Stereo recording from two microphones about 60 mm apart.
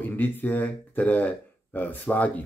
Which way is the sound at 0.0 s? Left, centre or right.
Left.